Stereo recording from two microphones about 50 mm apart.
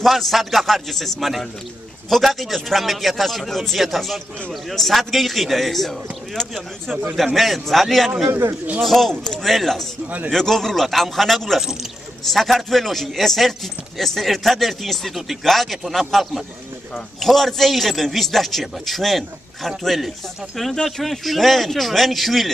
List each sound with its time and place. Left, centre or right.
0.0 s a man's voice: centre
8.3 s speech: right
8.8 s a man's voice: centre